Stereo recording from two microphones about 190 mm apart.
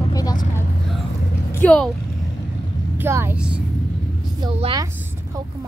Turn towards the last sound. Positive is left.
turn(degrees=-30)  # may be behind; listen again after turning